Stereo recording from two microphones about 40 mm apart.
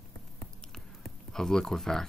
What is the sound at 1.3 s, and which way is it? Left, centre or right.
Speech, centre.